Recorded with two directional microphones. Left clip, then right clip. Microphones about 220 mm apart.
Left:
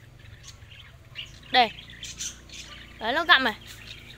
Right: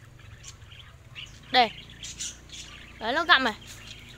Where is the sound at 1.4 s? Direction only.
5° right (ahead or behind).